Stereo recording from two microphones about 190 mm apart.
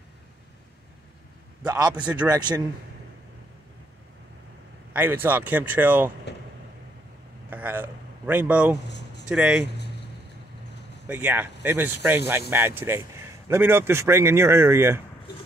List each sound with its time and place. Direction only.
1.7 s speech: 20° right (ahead or behind)
4.9 s speech: 10° right (ahead or behind)
7.4 s a man's voice: 10° right (ahead or behind)
8.8 s a sound: 65° left (ahead or behind)
9.3 s speech: 5° right (ahead or behind)
11.1 s speech: 10° right (ahead or behind)